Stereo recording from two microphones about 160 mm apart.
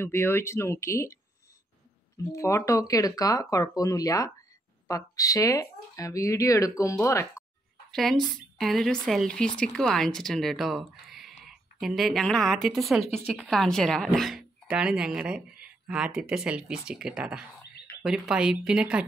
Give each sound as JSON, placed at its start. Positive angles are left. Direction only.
{"t": 0.0, "sound": "speech", "side_deg": 15}
{"t": 2.3, "sound": "speech", "side_deg": 20}
{"t": 7.9, "sound": "speech", "side_deg": 0}